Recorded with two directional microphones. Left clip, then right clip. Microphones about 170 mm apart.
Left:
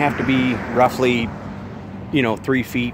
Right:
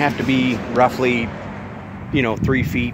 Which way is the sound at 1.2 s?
35° right (ahead or behind).